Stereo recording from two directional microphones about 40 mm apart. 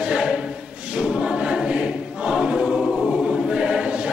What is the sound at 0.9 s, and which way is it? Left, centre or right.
Choir, centre.